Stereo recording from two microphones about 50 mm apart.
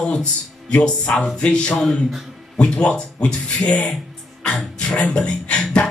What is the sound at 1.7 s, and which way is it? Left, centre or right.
Speech, centre.